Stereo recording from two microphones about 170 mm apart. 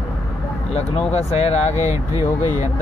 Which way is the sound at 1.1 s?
40° left (ahead or behind).